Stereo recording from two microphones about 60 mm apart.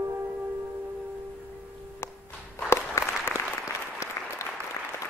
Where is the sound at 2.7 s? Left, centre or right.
Left.